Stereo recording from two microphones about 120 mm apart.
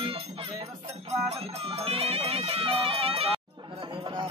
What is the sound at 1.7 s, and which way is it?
Speech, 55° right (ahead or behind).